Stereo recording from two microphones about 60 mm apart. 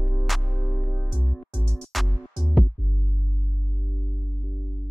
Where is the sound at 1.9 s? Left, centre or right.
Centre.